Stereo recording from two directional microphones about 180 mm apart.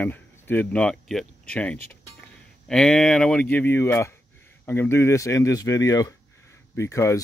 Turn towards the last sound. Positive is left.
turn(degrees=15)  # may be behind; listen again after turning